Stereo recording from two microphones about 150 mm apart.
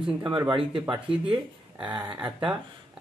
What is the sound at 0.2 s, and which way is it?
Speech, 30° right (ahead or behind).